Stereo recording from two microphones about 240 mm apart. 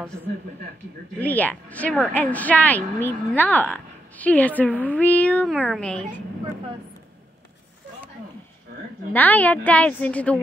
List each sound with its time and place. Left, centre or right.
1.2 s a woman's voice: centre
9.1 s a woman's voice: centre